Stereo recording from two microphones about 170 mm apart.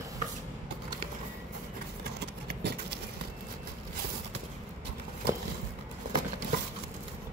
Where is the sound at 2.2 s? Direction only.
75° right (ahead or behind).